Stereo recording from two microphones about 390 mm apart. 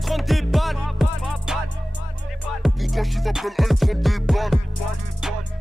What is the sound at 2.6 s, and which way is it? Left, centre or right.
Music, centre.